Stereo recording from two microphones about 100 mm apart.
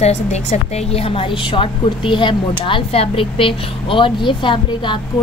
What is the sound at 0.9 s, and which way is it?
A woman's voice, 70° left (ahead or behind).